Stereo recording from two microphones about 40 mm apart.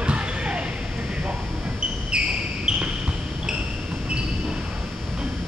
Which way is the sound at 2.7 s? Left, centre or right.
Centre.